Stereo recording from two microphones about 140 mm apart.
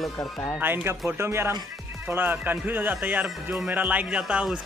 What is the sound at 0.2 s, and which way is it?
Speech, 25° left (ahead or behind).